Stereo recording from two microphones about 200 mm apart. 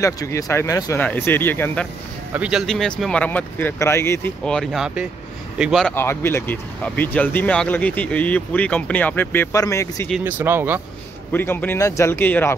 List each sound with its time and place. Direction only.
0.0 s speech: 15° left (ahead or behind)
2.3 s speech: 5° right (ahead or behind)
5.9 s speech: 10° left (ahead or behind)
10.0 s speech: 5° right (ahead or behind)
11.3 s speech: 10° left (ahead or behind)